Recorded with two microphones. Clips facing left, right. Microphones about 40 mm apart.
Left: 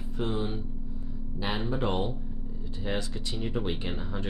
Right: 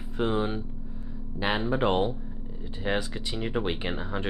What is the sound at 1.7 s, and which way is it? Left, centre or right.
Speech, right.